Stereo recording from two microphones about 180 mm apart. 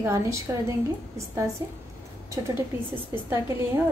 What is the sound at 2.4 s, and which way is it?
Speech, 20° right (ahead or behind).